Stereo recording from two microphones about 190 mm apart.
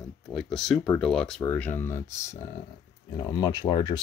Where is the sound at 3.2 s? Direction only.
25° left (ahead or behind).